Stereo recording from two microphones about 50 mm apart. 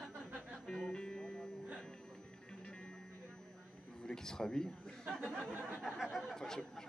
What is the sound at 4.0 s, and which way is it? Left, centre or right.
Speech, centre.